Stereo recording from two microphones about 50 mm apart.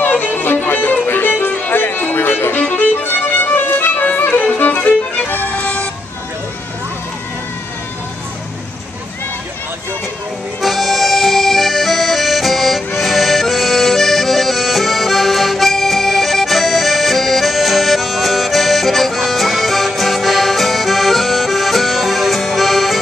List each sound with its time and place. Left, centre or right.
0.0 s music: left
4.3 s violin: left
5.2 s music: left
5.5 s vehicle: left
10.6 s accordion: centre